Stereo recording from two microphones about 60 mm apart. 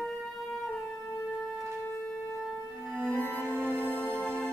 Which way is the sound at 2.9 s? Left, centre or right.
Right.